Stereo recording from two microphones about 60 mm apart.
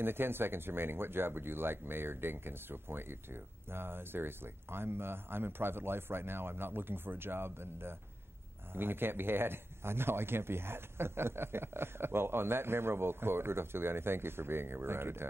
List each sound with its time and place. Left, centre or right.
0.0 s speech: right